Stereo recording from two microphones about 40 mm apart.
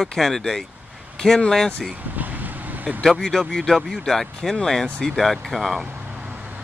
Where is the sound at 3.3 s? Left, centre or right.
Centre.